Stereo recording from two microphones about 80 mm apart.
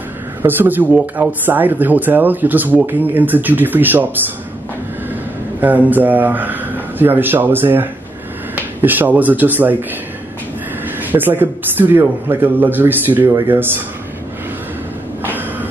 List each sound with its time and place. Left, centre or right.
0.4 s speech: right
5.6 s speech: right
11.1 s speech: right
15.2 s throat clearing: right